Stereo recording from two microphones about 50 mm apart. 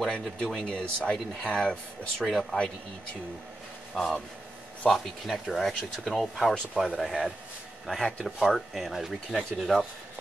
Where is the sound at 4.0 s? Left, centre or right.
Centre.